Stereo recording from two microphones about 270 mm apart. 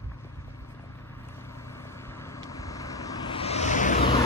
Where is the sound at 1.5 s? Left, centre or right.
Centre; by 4.1 s left.